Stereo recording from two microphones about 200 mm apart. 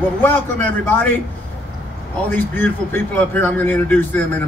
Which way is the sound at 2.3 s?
10° left (ahead or behind).